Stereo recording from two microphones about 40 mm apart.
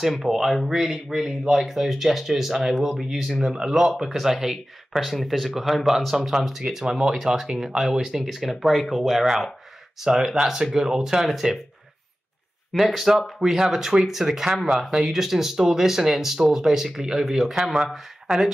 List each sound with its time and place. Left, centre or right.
0.2 s speech: centre
6.6 s speech: centre
10.0 s speech: centre
12.7 s speech: centre
14.5 s speech: centre